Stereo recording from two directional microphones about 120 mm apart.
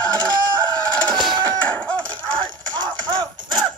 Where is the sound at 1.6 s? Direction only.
10° left (ahead or behind).